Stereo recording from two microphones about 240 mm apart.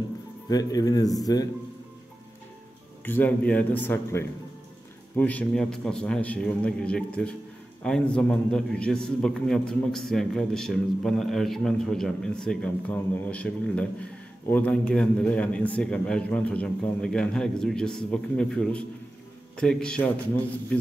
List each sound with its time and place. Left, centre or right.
0.5 s a man's voice: centre
3.1 s a man's voice: centre